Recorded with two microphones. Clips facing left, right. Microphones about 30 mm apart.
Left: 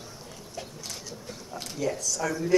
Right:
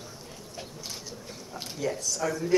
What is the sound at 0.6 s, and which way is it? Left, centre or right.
Vehicle, centre.